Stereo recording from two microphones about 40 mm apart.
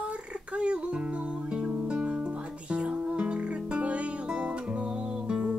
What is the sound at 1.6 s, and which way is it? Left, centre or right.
Music, centre.